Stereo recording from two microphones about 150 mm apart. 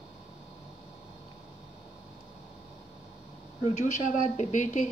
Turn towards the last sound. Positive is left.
turn(degrees=55)  # may be behind; listen again after turning